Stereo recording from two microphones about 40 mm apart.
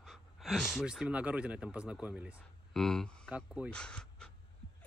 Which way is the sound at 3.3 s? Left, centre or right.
Right.